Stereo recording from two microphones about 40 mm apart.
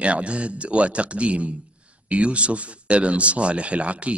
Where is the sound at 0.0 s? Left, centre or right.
Right.